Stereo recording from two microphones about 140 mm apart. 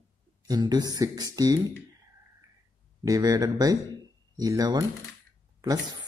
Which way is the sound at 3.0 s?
25° right (ahead or behind).